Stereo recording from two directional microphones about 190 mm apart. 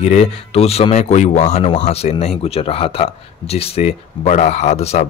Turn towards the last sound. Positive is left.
turn(degrees=35)  # may be behind; listen again after turning